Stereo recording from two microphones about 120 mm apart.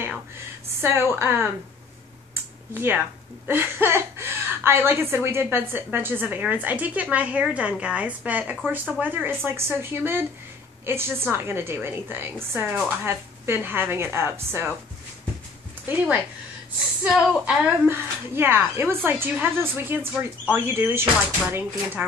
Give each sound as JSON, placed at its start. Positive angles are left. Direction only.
{"t": 0.7, "sound": "speech", "side_deg": -20}
{"t": 2.7, "sound": "a woman's voice", "side_deg": -20}
{"t": 17.1, "sound": "a sound", "side_deg": 0}
{"t": 17.8, "sound": "speech", "side_deg": -20}